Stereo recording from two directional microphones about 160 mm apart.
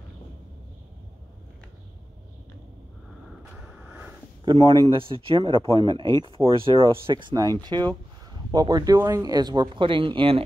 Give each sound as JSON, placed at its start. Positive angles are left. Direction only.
{"t": 3.5, "sound": "vehicle", "side_deg": -5}
{"t": 4.5, "sound": "speech", "side_deg": -35}